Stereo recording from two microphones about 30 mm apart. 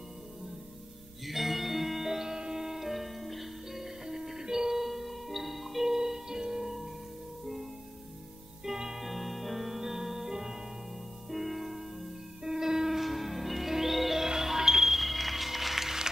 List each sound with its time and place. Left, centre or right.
1.2 s music: centre
4.8 s music: centre
5.9 s music: centre
8.6 s music: centre
9.0 s music: centre
11.2 s music: centre
12.4 s train: centre
12.9 s music: centre
15.0 s music: centre